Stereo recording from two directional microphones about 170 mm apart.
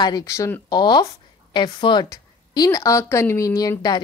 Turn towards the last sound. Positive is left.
turn(degrees=20)  # may be behind; listen again after turning